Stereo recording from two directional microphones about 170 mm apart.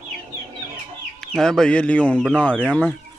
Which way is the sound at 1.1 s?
5° left (ahead or behind).